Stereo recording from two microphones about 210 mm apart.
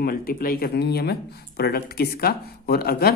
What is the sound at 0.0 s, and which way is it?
Speech, 45° left (ahead or behind).